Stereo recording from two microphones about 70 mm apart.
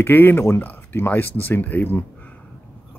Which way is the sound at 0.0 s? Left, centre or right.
Left.